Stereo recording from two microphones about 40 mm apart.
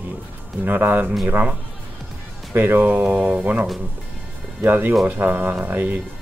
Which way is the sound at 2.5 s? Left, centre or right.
Right.